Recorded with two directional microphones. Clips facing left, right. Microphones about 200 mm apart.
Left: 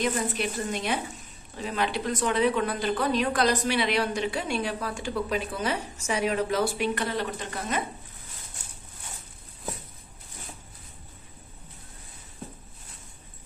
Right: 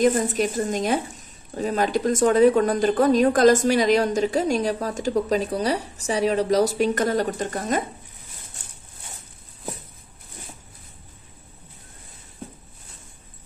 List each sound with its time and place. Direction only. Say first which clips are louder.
0.0 s speech: right 8 dB; 45° right (ahead or behind)